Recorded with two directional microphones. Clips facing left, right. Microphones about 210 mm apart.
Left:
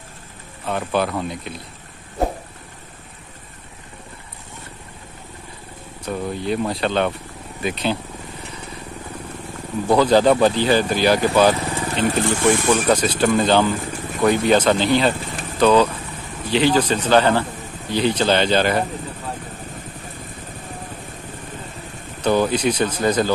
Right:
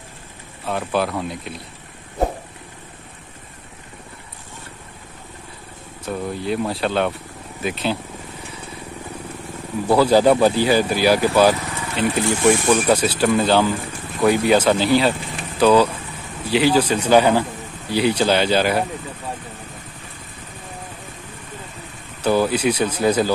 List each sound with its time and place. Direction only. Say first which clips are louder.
0.7 s speech: even; centre (ahead or behind)
6.0 s speech: even; centre (ahead or behind)
9.8 s a man's voice: even; 10° right (ahead or behind)
11.6 s vehicle: left 4 dB; 30° left (ahead or behind)
12.4 s a man's voice: right 2 dB; 5° right (ahead or behind)
22.2 s a man's voice: even; 5° right (ahead or behind)